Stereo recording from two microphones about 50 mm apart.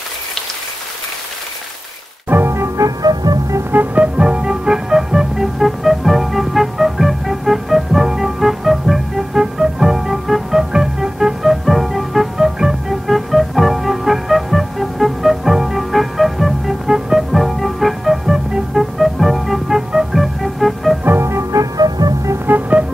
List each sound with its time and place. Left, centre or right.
2.2 s music: right
2.8 s music: right
3.7 s music: right; by 11.5 s centre
11.6 s music: centre
21.2 s music: right
22.5 s music: right